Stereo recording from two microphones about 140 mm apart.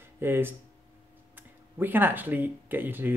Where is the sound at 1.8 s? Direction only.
15° right (ahead or behind).